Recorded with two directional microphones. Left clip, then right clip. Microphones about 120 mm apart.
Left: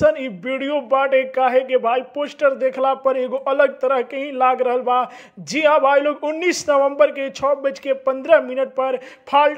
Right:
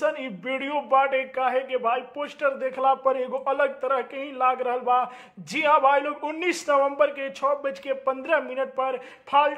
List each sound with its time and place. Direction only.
0.0 s a man's voice: 35° left (ahead or behind)